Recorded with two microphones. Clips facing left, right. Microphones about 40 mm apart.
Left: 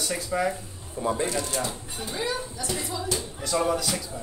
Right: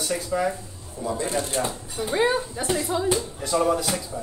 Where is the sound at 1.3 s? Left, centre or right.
Right.